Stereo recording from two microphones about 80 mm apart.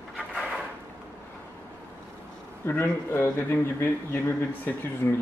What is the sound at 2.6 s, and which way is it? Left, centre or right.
Speech, left.